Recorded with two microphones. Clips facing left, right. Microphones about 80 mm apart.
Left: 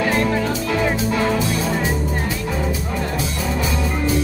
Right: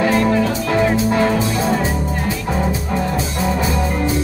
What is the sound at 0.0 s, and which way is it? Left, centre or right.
Music, right.